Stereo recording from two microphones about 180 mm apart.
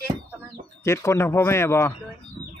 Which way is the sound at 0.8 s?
15° left (ahead or behind).